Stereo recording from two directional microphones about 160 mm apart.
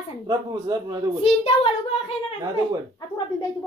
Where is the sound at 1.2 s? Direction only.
35° left (ahead or behind).